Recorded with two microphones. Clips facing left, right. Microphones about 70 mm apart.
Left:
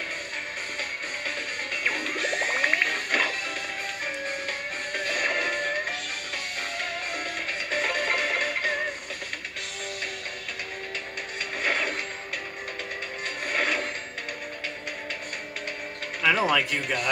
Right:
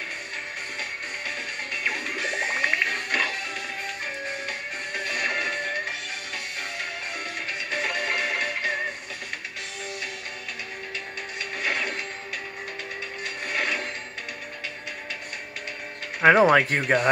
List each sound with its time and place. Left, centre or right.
1.9 s music: centre
4.9 s music: centre
7.7 s music: centre
11.6 s music: centre
13.5 s music: centre
16.2 s speech: right